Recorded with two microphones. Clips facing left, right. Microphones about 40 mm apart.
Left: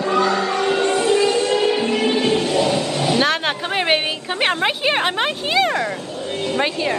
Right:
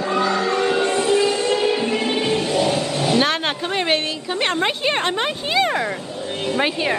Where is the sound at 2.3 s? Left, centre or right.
Centre.